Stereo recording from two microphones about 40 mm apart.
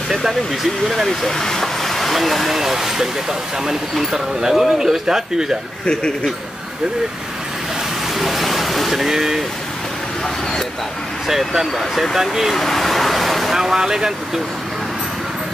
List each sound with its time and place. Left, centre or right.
0.1 s speech: centre
1.0 s speech: centre
5.9 s speech: left
8.2 s a sound: centre
11.2 s speech: centre
12.5 s vehicle: centre
13.6 s speech: centre